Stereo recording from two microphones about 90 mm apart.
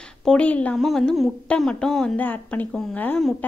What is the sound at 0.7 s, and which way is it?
Speech, 5° left (ahead or behind).